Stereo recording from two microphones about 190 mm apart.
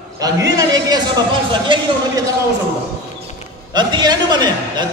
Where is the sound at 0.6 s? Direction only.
20° right (ahead or behind).